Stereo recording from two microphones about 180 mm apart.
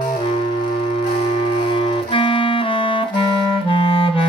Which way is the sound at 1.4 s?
30° left (ahead or behind).